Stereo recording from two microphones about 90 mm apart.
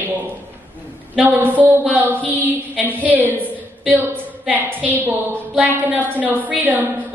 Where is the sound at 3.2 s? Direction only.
20° right (ahead or behind).